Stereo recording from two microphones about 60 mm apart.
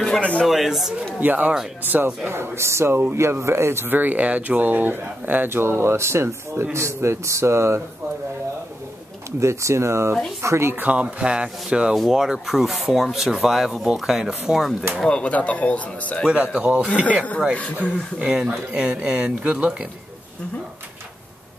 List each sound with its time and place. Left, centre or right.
0.0 s speech: centre
0.5 s speech: centre
1.2 s a man's voice: right
2.2 s speech: right
3.2 s speech: right
9.4 s speech: right
10.9 s speech: right
11.9 s speech: centre
15.0 s speech: centre
16.3 s a man's voice: centre
16.9 s speech: centre
18.2 s speech: centre